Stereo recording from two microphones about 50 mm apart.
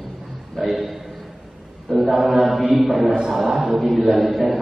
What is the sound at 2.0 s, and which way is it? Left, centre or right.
A man's voice, centre.